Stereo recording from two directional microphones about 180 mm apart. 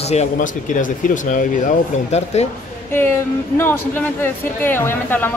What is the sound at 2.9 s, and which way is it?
Speech, 10° left (ahead or behind).